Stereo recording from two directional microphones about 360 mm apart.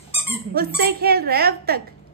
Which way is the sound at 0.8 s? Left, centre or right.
Right.